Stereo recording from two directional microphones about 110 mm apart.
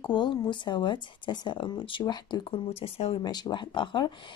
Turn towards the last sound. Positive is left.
turn(degrees=45)  # may be behind; listen again after turning